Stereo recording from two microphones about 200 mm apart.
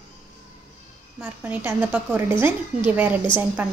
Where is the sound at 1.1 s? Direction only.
10° right (ahead or behind).